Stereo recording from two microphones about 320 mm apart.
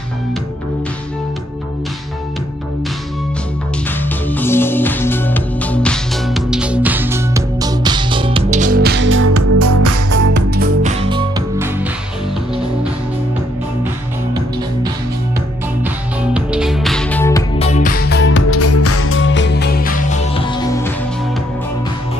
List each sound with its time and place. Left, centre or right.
4.0 s music: centre; by 9.8 s right
10.8 s music: centre
15.8 s music: centre
17.6 s music: left